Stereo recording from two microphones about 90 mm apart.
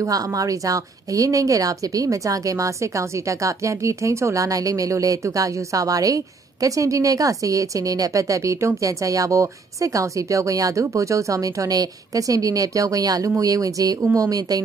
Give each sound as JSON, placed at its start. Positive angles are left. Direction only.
{"t": 0.0, "sound": "speech", "side_deg": -40}